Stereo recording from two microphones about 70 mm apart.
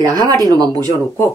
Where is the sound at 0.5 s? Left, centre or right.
Right.